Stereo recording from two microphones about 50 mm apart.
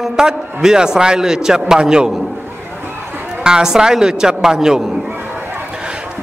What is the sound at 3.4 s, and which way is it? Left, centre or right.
A woman's voice, centre.